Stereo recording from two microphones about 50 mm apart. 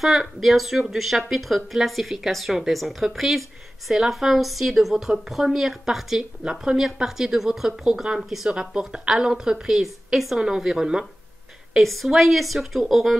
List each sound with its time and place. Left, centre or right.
0.0 s speech: centre
6.4 s a woman's voice: centre
8.2 s speech: centre
8.5 s a woman's voice: centre
11.7 s speech: centre